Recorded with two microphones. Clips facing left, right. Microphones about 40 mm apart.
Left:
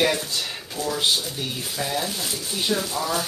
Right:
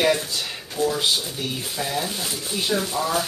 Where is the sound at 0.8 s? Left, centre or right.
Right.